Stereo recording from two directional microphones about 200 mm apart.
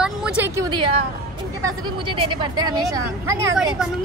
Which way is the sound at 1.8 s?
25° right (ahead or behind).